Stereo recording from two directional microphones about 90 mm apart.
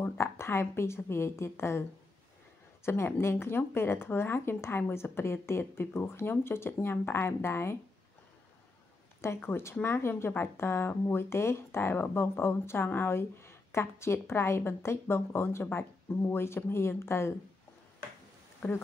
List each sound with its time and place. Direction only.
0.2 s speech: 30° left (ahead or behind)
9.2 s speech: 30° left (ahead or behind)
18.6 s speech: 25° left (ahead or behind)